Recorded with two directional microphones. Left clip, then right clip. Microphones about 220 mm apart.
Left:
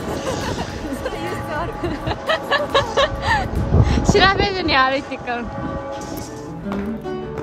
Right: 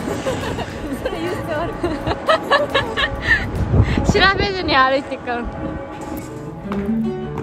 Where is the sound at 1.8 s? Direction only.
5° left (ahead or behind).